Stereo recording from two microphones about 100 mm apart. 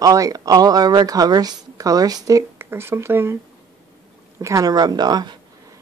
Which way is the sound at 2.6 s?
25° right (ahead or behind).